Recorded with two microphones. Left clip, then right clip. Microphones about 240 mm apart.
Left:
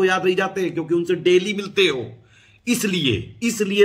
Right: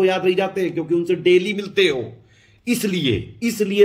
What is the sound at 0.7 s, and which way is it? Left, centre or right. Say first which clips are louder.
Speech: even; left.